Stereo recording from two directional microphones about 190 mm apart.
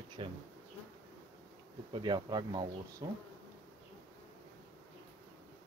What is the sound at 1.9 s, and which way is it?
Speech, 25° right (ahead or behind).